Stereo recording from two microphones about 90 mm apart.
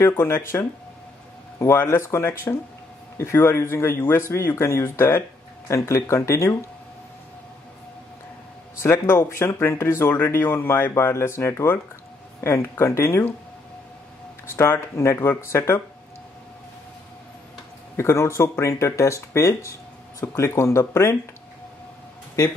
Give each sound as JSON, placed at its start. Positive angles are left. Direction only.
{"t": 0.0, "sound": "speech", "side_deg": 30}
{"t": 8.8, "sound": "speech", "side_deg": 25}
{"t": 14.4, "sound": "speech", "side_deg": 30}
{"t": 17.9, "sound": "speech", "side_deg": 30}